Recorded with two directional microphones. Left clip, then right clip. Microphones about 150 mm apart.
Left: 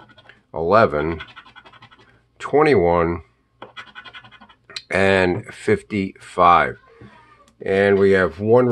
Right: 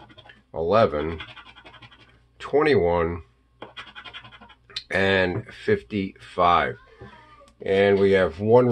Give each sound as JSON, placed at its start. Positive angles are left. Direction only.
{"t": 0.3, "sound": "speech", "side_deg": 45}
{"t": 2.3, "sound": "speech", "side_deg": 45}
{"t": 4.6, "sound": "speech", "side_deg": 40}